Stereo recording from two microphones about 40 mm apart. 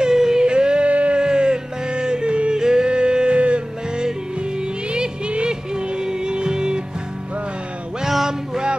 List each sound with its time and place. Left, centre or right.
0.0 s yodeling: centre
0.5 s yodeling: right
1.2 s yodeling: right
4.9 s music: right
8.3 s music: centre